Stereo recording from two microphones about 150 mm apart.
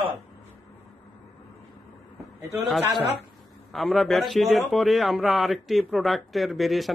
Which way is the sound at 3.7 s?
Centre (ahead or behind).